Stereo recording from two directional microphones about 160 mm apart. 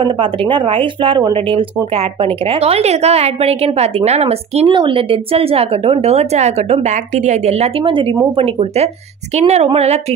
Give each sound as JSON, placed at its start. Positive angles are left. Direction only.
{"t": 0.0, "sound": "a woman's voice", "side_deg": -30}